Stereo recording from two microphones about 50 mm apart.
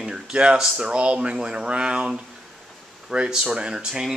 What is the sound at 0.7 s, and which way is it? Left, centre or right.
Speech, centre.